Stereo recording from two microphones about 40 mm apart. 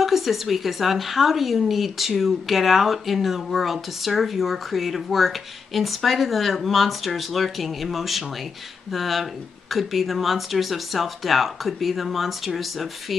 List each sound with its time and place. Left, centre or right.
0.0 s a woman's voice: centre